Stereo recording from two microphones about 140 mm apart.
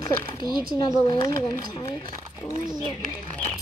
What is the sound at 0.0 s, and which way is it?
A woman's voice, 30° left (ahead or behind).